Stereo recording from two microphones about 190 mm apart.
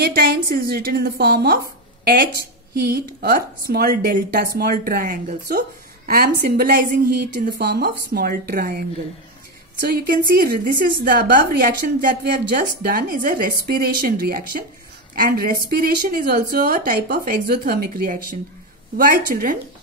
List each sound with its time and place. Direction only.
0.0 s a woman's voice: 55° right (ahead or behind)
2.7 s a woman's voice: 55° right (ahead or behind)